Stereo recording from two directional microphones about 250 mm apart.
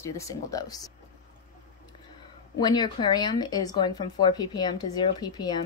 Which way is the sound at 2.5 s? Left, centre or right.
Centre.